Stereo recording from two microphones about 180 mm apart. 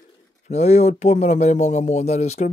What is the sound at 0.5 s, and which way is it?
Speech, 35° left (ahead or behind).